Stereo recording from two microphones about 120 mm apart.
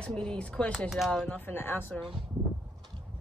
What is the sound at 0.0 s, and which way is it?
Speech, 5° left (ahead or behind).